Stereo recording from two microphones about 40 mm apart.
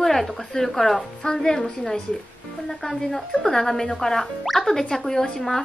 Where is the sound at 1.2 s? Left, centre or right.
Centre.